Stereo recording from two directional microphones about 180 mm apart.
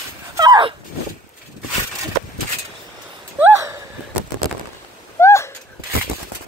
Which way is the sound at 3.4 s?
15° right (ahead or behind).